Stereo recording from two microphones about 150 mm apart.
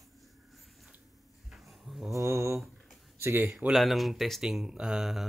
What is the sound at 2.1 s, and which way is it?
Mantra, 20° right (ahead or behind).